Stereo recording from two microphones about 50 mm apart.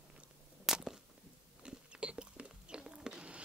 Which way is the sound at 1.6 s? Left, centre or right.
Right.